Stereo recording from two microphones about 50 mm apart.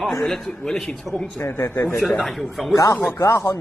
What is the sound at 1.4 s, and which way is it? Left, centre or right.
Speech, left.